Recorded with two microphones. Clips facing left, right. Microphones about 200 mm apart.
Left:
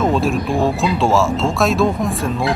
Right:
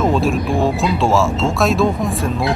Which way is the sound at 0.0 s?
Centre (ahead or behind).